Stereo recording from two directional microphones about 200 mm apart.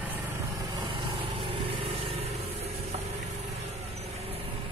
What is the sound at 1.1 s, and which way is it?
Vehicle, 25° right (ahead or behind).